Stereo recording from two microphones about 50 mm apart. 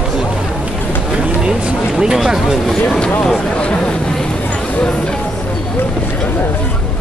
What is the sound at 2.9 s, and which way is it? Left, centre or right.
Speech, left.